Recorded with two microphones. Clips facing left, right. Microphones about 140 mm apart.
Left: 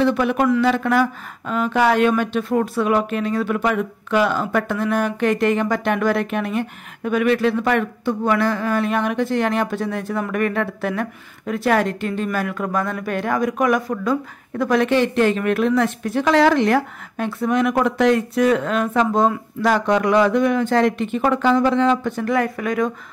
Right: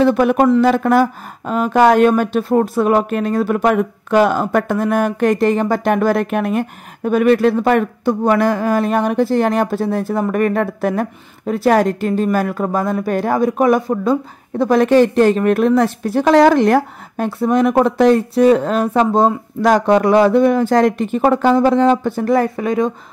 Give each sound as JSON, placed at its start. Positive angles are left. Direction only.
{"t": 0.0, "sound": "speech", "side_deg": -45}